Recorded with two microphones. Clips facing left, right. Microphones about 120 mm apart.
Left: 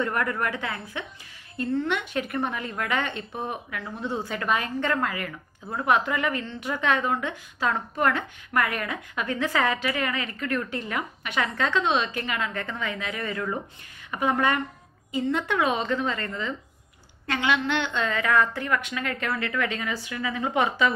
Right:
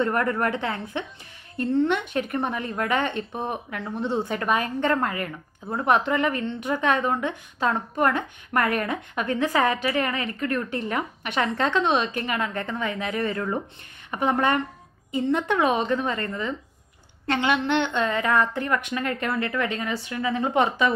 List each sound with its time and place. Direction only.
0.0 s a woman's voice: 30° right (ahead or behind)
1.7 s a woman's voice: 25° right (ahead or behind)
8.5 s a woman's voice: 30° right (ahead or behind)